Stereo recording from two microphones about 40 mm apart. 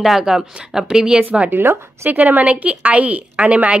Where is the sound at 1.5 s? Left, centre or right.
Right.